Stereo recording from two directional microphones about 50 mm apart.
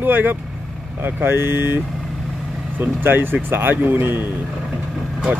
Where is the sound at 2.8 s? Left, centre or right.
Right.